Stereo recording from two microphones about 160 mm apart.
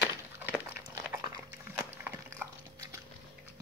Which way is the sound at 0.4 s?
10° right (ahead or behind).